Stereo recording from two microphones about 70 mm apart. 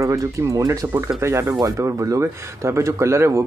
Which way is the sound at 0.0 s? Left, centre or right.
Right.